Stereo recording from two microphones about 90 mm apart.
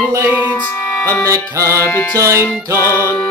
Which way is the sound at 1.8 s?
20° left (ahead or behind).